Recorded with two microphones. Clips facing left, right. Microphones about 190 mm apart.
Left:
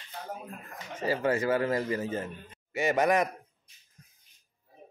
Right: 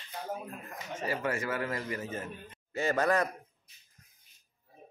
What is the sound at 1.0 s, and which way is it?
Speech, 30° left (ahead or behind).